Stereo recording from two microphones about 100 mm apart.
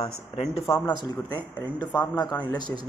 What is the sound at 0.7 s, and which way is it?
Speech, 50° left (ahead or behind).